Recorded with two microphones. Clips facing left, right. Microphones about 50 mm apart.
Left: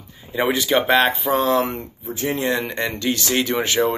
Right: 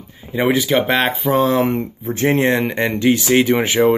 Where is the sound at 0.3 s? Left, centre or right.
Centre.